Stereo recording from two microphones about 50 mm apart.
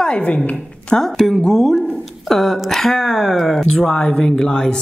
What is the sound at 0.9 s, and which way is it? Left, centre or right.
Speech, centre.